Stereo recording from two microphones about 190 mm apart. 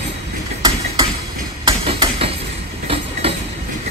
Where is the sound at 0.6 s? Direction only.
25° right (ahead or behind).